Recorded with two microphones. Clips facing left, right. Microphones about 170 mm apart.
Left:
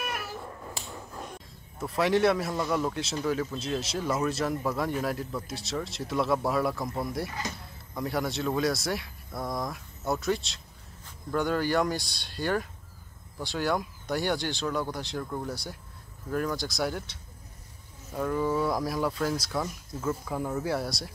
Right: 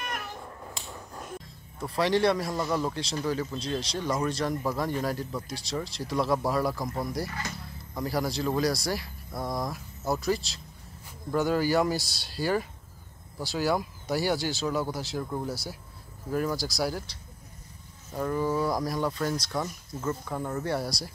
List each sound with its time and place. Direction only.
0.0 s cat: 5° left (ahead or behind)
1.8 s speech: 5° left (ahead or behind)
7.2 s speech: 20° left (ahead or behind)
7.9 s speech: centre (ahead or behind)